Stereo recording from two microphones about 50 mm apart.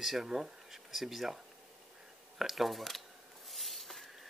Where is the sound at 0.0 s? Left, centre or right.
Centre.